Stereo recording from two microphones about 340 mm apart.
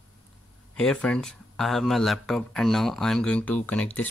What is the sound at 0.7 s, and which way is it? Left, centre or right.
Speech, centre.